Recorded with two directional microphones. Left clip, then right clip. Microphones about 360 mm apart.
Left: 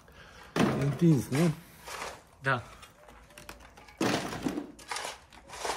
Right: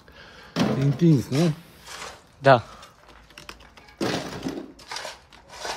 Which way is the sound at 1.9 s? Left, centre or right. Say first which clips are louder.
Right 1 dB; centre.